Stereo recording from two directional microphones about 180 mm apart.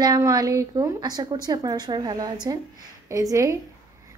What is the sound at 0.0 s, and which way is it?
A woman's voice, 20° right (ahead or behind).